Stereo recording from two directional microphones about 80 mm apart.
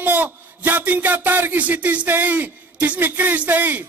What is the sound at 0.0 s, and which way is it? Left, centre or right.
A man's voice, right.